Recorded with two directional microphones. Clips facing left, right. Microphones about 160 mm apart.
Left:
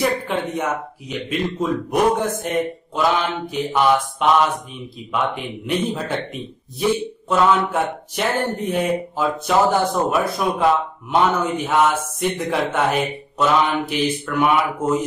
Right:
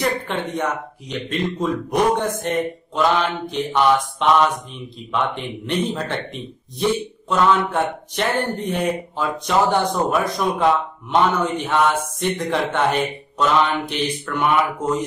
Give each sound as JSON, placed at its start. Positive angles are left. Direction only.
{"t": 0.0, "sound": "speech", "side_deg": 5}